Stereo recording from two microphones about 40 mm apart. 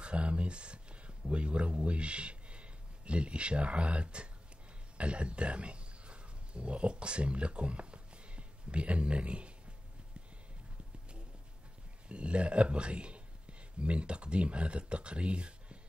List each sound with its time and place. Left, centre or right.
0.0 s a man's voice: right
12.1 s a man's voice: right